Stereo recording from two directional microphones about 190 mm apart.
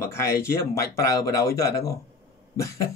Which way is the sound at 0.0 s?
15° left (ahead or behind).